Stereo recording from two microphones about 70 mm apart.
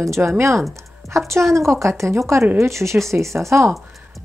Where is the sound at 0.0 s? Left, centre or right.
Right.